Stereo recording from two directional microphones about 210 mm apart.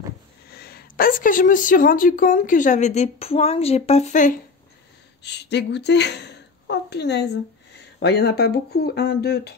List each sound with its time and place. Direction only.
0.5 s a woman's voice: 50° left (ahead or behind)
5.2 s a woman's voice: 55° left (ahead or behind)